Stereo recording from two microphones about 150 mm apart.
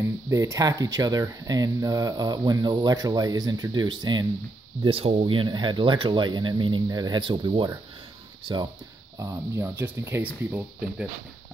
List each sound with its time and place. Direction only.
0.0 s speech: 20° right (ahead or behind)
9.2 s speech: 20° right (ahead or behind)